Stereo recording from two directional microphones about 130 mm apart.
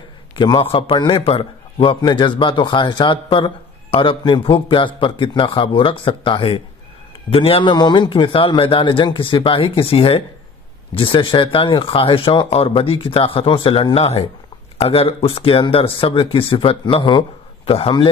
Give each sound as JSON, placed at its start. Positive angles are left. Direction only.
{"t": 0.4, "sound": "a man's voice", "side_deg": 40}
{"t": 13.9, "sound": "a man's voice", "side_deg": 55}